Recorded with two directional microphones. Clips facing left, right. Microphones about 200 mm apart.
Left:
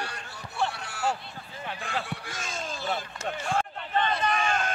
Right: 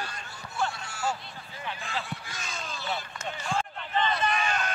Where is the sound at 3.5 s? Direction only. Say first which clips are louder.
Left 1 dB; 60° left (ahead or behind).